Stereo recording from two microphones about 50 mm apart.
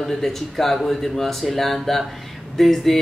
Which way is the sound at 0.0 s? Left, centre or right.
Centre.